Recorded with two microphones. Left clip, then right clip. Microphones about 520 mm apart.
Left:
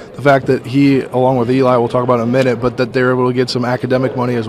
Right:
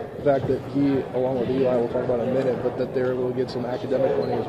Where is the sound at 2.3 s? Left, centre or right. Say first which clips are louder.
Left 9 dB; left.